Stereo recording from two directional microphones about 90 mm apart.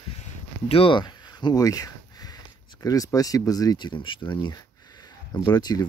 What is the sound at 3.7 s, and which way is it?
Speech, 60° left (ahead or behind).